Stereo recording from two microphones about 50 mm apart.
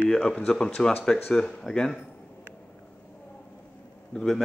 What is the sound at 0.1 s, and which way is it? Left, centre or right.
Speech, centre.